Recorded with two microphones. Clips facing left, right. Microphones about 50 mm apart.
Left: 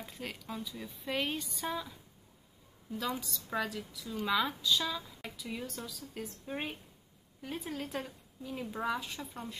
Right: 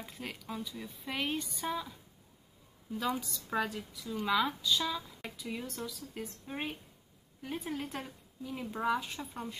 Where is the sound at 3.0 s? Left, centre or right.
Centre.